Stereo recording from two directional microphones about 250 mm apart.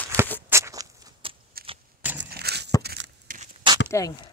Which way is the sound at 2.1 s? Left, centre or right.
Right.